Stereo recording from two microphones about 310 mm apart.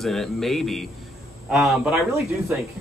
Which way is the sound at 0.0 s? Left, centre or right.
Centre.